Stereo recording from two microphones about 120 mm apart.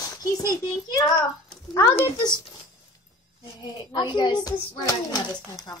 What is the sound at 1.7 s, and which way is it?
Speech, 25° left (ahead or behind).